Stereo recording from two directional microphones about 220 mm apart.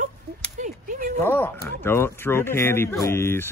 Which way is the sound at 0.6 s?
35° right (ahead or behind).